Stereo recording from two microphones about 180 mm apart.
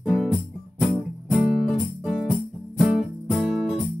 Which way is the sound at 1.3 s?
Centre (ahead or behind).